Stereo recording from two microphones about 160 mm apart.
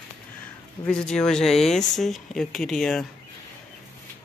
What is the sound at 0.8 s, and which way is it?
Speech, 5° left (ahead or behind).